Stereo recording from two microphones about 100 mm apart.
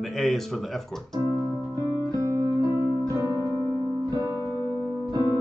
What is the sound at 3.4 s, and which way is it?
Music, 40° left (ahead or behind).